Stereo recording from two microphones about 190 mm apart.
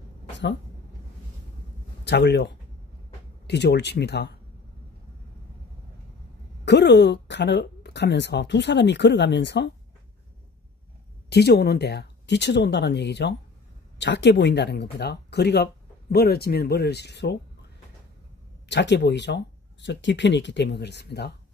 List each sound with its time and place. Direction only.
2.0 s speech: 65° left (ahead or behind)
6.6 s speech: 65° left (ahead or behind)
11.2 s speech: 60° left (ahead or behind)
18.7 s speech: 65° left (ahead or behind)